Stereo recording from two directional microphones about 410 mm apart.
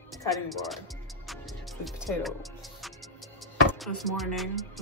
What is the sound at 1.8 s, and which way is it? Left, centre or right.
Speech, centre.